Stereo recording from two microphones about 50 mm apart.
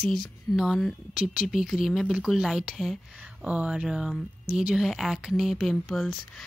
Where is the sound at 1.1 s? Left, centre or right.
Centre.